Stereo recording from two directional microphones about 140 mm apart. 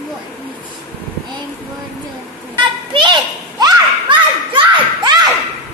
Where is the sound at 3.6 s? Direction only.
35° right (ahead or behind).